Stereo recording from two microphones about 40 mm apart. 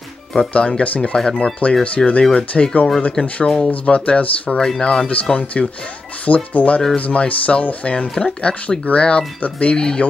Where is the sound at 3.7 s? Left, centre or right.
Left.